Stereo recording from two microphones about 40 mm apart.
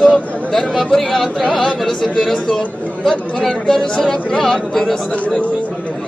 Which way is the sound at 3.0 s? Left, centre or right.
Left.